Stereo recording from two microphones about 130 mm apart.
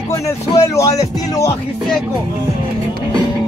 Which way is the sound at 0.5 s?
25° left (ahead or behind).